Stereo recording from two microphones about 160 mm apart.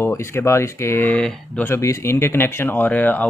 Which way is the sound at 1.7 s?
20° left (ahead or behind).